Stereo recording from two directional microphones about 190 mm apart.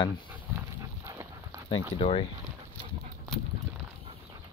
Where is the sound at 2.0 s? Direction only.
30° left (ahead or behind).